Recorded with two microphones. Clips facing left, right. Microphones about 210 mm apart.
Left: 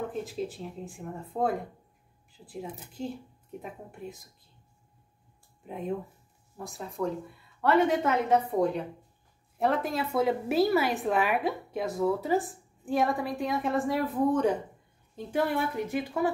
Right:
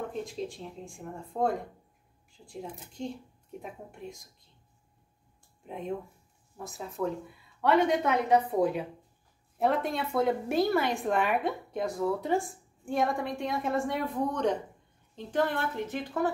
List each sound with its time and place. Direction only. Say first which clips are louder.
0.0 s a woman's voice: left 2 dB; 5° left (ahead or behind)
5.6 s a woman's voice: left 2 dB; centre (ahead or behind)